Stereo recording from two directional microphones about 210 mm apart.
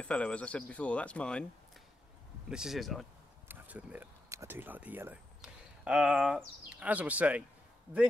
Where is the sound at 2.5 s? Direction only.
5° right (ahead or behind).